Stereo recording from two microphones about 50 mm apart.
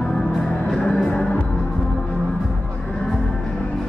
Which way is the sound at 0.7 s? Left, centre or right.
Centre.